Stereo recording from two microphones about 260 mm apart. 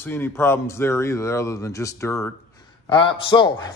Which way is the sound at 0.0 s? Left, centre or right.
Centre.